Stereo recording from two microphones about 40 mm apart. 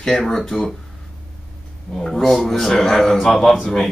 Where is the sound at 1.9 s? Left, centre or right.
Centre.